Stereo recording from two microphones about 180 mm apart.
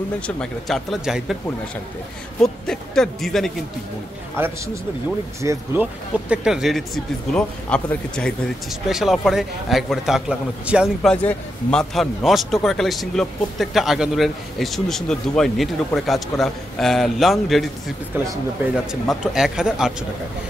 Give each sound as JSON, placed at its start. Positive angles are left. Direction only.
{"t": 0.4, "sound": "speech", "side_deg": 0}
{"t": 2.4, "sound": "speech", "side_deg": 5}
{"t": 4.4, "sound": "speech", "side_deg": -10}
{"t": 18.1, "sound": "speech", "side_deg": -15}
{"t": 18.9, "sound": "speech", "side_deg": 0}